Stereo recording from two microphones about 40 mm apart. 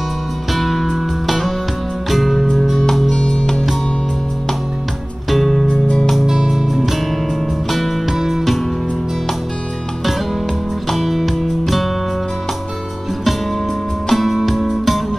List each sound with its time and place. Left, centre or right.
0.6 s music: centre
5.3 s music: centre
5.7 s music: left
6.2 s music: centre
10.9 s music: centre
14.0 s music: centre